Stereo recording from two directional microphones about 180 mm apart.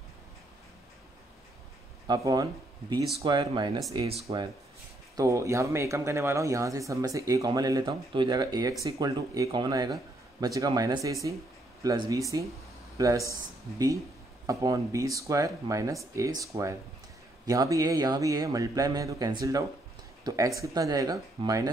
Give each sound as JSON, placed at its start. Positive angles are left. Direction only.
{"t": 2.0, "sound": "a man's voice", "side_deg": -20}
{"t": 5.1, "sound": "a man's voice", "side_deg": -15}